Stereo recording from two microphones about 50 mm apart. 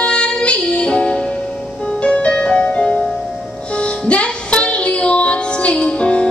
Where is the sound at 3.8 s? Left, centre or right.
Left.